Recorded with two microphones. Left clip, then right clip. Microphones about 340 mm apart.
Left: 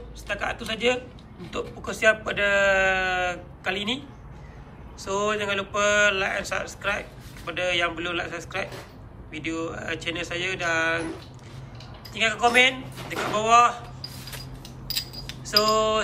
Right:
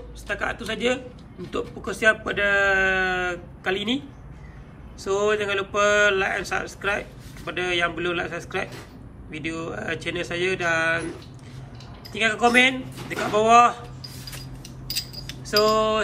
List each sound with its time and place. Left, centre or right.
0.3 s speech: centre
2.2 s speech: centre
5.0 s speech: centre
12.1 s speech: centre
14.9 s a sound: left
15.4 s speech: centre